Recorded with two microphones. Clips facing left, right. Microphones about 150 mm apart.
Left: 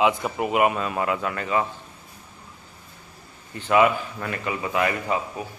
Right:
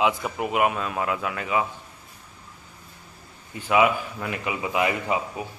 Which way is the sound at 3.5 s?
5° right (ahead or behind).